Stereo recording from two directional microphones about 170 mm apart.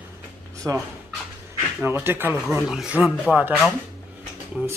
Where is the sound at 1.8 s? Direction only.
10° right (ahead or behind).